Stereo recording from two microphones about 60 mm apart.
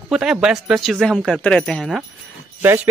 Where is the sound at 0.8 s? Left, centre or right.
Centre.